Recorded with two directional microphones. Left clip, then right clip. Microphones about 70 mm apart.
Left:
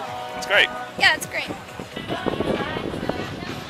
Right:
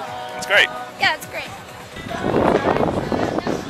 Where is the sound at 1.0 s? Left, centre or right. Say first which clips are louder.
Left 1 dB; left.